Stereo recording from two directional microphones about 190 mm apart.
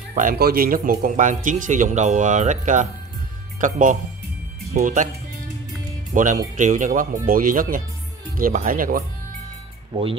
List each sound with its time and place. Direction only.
0.1 s speech: 45° right (ahead or behind)
6.1 s speech: 45° right (ahead or behind)